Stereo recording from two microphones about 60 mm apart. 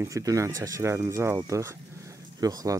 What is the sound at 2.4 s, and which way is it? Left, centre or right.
Speech, right.